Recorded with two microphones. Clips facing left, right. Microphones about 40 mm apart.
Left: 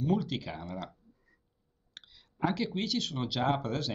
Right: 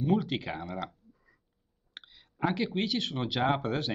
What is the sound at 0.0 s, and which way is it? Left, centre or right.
Speech, right.